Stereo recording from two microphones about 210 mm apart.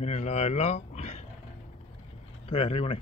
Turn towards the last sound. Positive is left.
turn(degrees=25)  # may be behind; listen again after turning